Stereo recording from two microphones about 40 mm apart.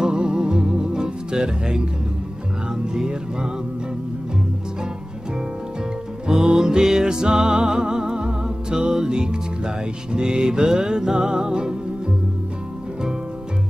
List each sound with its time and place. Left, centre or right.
0.0 s music: centre
6.2 s music: centre